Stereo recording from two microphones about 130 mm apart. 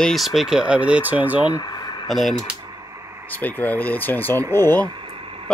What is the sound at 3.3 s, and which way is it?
Speech, 15° left (ahead or behind).